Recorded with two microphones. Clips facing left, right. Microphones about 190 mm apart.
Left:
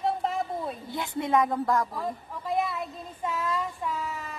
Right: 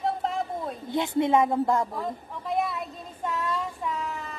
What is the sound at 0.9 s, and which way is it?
A woman's voice, 25° right (ahead or behind).